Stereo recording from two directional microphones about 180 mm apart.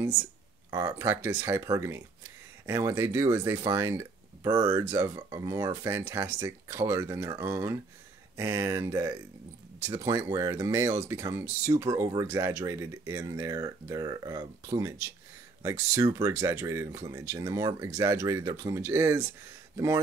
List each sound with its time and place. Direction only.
0.7 s speech: 15° right (ahead or behind)